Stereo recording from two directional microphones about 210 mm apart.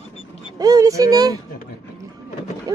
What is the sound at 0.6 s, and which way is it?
Speech, 15° right (ahead or behind).